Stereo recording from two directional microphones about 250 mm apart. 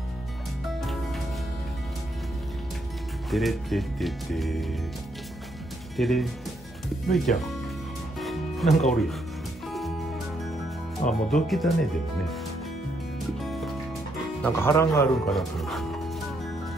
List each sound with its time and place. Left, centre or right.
0.7 s music: centre
3.3 s speech: centre
5.9 s speech: centre
8.2 s music: centre
11.0 s speech: left
11.3 s speech: centre
13.4 s music: centre
14.4 s speech: centre